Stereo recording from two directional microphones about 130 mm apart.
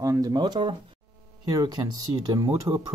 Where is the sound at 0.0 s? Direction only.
25° right (ahead or behind).